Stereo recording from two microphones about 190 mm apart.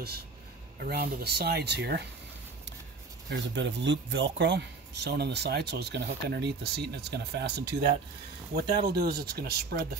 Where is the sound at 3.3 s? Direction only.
70° right (ahead or behind).